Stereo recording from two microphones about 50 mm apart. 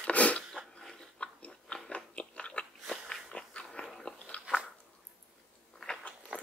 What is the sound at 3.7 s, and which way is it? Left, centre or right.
Dog, centre.